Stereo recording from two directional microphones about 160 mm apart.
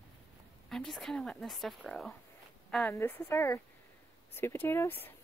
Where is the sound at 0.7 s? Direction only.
Centre (ahead or behind).